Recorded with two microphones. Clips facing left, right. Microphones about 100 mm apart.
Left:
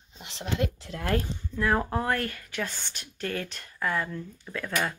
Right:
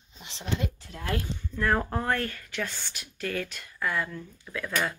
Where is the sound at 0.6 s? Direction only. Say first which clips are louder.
Left 4 dB; 65° left (ahead or behind).